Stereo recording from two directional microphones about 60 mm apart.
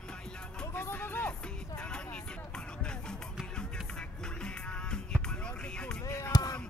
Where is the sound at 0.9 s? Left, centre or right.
Left.